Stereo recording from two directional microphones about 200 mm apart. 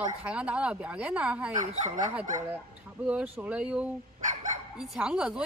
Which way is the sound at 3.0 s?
5° right (ahead or behind).